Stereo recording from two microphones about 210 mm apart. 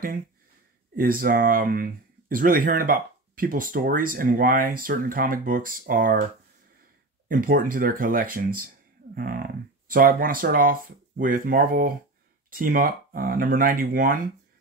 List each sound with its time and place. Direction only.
0.9 s speech: 40° right (ahead or behind)
7.2 s speech: 40° right (ahead or behind)